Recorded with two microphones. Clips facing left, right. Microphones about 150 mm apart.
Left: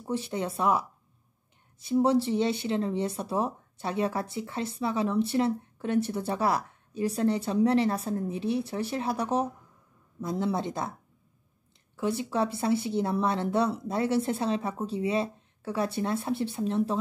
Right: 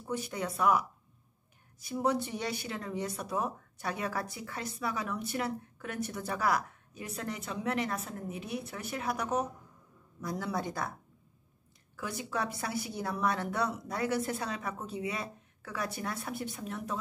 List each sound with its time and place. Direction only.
0.0 s speech: 25° left (ahead or behind)
12.0 s speech: 30° left (ahead or behind)